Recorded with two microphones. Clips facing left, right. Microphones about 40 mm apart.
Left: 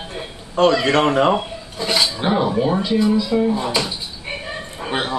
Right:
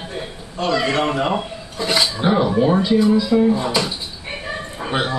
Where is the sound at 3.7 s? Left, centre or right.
Centre.